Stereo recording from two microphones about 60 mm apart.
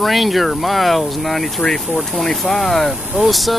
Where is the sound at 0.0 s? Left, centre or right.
Centre.